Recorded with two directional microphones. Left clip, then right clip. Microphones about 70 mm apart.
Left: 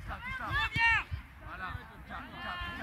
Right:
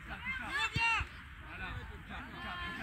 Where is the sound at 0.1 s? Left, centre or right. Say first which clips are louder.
Left 3 dB; centre.